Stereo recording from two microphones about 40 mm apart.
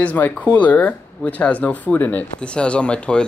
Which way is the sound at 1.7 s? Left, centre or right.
Left.